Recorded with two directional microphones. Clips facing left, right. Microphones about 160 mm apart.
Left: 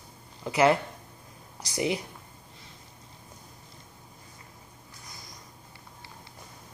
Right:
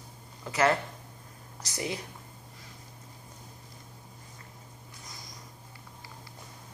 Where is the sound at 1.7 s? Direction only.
15° left (ahead or behind).